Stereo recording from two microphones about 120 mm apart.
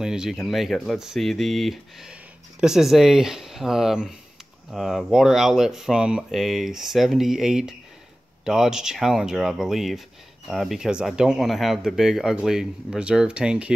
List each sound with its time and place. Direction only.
0.0 s speech: 5° right (ahead or behind)